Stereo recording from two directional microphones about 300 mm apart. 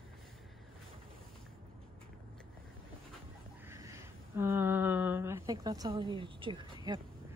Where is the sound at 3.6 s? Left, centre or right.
Centre.